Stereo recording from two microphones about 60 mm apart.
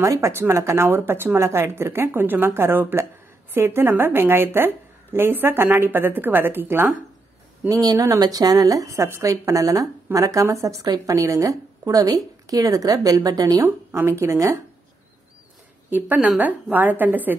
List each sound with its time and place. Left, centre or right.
0.0 s a woman's voice: right
7.6 s a woman's voice: right
9.5 s a woman's voice: right
12.4 s speech: right
13.6 s speech: right
15.9 s a woman's voice: right